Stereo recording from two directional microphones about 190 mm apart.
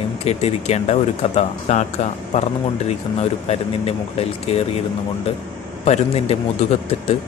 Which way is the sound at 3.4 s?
30° left (ahead or behind).